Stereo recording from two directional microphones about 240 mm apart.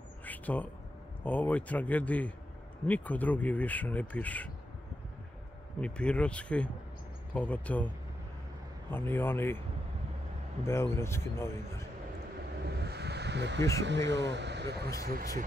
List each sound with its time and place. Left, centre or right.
0.2 s a sound: centre
1.2 s speech: centre
5.8 s speech: centre
8.9 s speech: centre
10.6 s speech: centre
12.6 s a sound: right
13.8 s speech: right